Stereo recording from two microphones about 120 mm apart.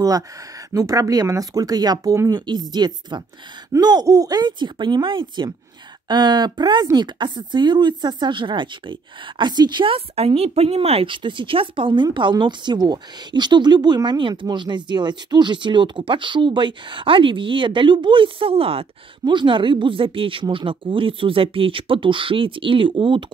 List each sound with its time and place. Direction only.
0.7 s a woman's voice: 30° right (ahead or behind); by 18.9 s 50° right (ahead or behind)
19.2 s a woman's voice: 40° right (ahead or behind)